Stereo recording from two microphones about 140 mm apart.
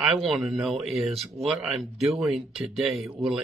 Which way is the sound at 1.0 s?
45° right (ahead or behind).